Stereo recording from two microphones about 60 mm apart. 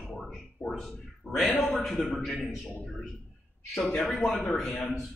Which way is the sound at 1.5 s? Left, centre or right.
Left.